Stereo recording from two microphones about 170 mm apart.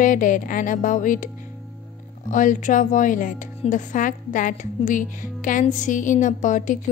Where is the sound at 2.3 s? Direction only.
50° left (ahead or behind).